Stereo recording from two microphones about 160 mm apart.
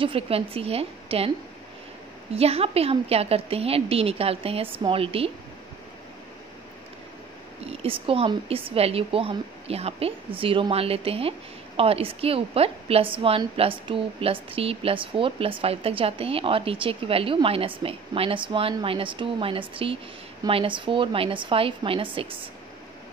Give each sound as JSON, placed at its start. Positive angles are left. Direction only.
{"t": 0.0, "sound": "a woman's voice", "side_deg": -35}
{"t": 2.3, "sound": "a woman's voice", "side_deg": -40}
{"t": 7.6, "sound": "a woman's voice", "side_deg": -35}